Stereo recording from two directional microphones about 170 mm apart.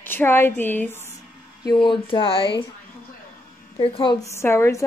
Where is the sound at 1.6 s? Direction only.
25° left (ahead or behind).